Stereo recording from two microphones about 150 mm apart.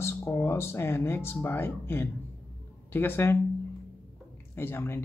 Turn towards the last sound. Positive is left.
turn(degrees=15)  # may be behind; listen again after turning